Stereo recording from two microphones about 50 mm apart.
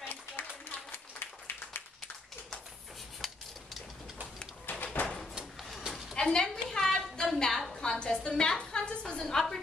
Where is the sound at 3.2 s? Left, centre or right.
Centre.